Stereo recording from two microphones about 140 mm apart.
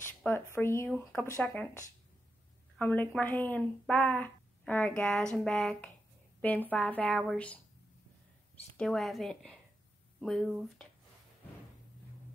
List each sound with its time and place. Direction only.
0.0 s a woman's voice: 15° left (ahead or behind)
2.8 s a woman's voice: 10° left (ahead or behind)
8.7 s a woman's voice: 5° left (ahead or behind)